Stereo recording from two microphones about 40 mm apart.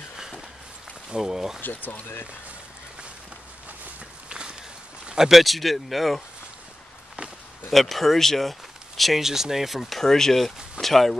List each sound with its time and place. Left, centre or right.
1.1 s speech: centre
1.6 s speech: left
4.3 s walk: right
5.1 s speech: centre
5.4 s speech: centre
7.7 s speech: centre
9.2 s speech: centre